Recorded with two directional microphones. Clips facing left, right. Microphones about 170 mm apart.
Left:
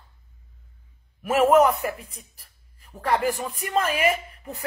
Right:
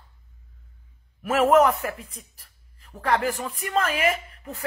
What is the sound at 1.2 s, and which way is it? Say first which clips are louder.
Speech: left 1 dB; 15° left (ahead or behind).